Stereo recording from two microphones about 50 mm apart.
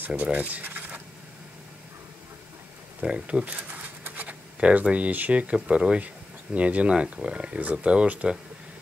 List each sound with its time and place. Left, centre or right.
0.0 s speech: right
3.0 s a sound: right
4.6 s speech: right